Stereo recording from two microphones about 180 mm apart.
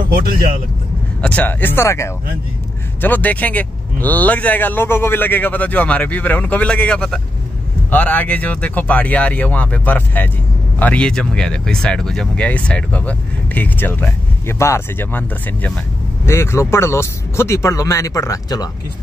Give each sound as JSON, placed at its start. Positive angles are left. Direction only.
{"t": 0.1, "sound": "speech", "side_deg": -55}
{"t": 1.2, "sound": "speech", "side_deg": 10}